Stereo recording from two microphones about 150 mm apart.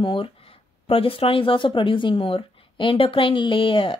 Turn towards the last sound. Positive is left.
turn(degrees=35)  # may be behind; listen again after turning